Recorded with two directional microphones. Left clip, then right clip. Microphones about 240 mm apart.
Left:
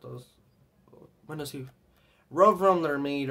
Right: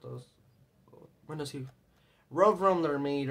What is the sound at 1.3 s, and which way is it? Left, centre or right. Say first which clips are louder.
Speech: left 2 dB; centre.